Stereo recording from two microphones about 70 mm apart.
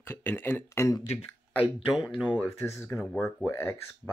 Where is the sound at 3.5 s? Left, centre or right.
Left.